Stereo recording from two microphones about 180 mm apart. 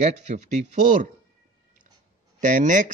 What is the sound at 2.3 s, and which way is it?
Speech, 45° right (ahead or behind).